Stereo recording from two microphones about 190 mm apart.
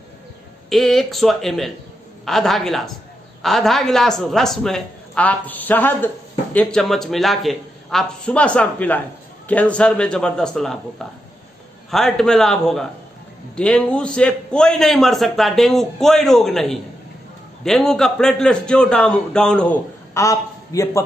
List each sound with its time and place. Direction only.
0.7 s a man's voice: centre (ahead or behind)
11.9 s a man's voice: centre (ahead or behind)
20.2 s a man's voice: 15° left (ahead or behind)